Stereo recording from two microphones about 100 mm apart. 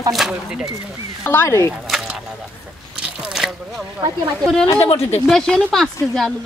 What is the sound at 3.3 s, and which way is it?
Speech, 5° right (ahead or behind).